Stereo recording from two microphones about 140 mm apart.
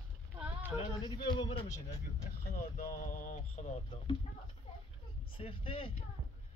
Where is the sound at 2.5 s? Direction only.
75° left (ahead or behind); by 3.7 s 60° left (ahead or behind).